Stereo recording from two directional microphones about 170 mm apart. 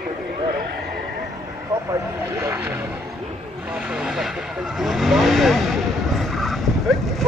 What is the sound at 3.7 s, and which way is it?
Vehicle, 5° right (ahead or behind).